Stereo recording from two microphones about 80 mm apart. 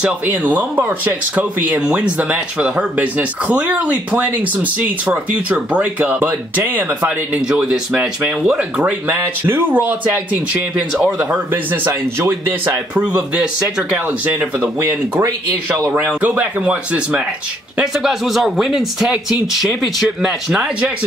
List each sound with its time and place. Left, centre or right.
0.0 s speech: right
7.4 s speech: centre
9.5 s speech: right
12.9 s speech: centre
15.1 s speech: right
16.2 s speech: centre
17.9 s speech: centre